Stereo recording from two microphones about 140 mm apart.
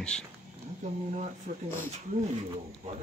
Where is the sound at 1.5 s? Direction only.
55° right (ahead or behind).